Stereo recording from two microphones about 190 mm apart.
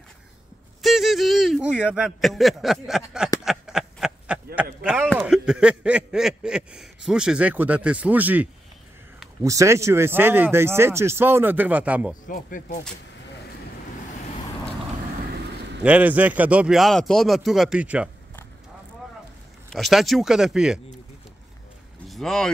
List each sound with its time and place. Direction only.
0.8 s speech: centre (ahead or behind)
3.4 s a sound: 5° right (ahead or behind)
4.8 s speech: 5° right (ahead or behind)
12.3 s speech: 45° left (ahead or behind)
15.8 s speech: 5° right (ahead or behind)
19.7 s speech: centre (ahead or behind)
22.1 s speech: centre (ahead or behind)